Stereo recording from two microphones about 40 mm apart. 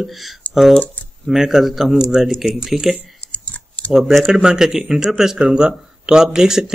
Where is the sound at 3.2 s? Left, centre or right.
Left.